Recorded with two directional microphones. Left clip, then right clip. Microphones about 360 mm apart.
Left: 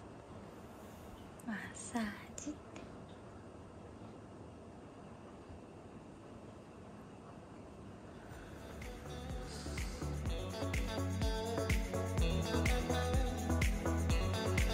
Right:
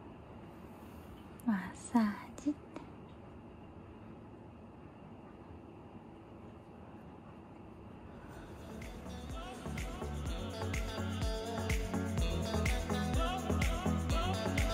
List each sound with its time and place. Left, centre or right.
1.5 s a woman's voice: centre
8.7 s music: centre